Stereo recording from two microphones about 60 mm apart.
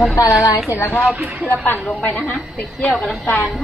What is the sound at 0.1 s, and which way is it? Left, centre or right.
Speech, left.